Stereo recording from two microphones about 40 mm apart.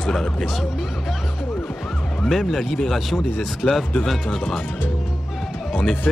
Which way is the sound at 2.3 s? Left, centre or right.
Centre.